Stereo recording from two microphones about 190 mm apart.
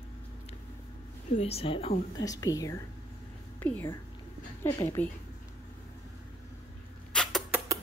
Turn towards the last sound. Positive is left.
turn(degrees=0)  # may be behind; listen again after turning